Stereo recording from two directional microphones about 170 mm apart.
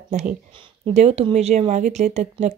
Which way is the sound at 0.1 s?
40° right (ahead or behind).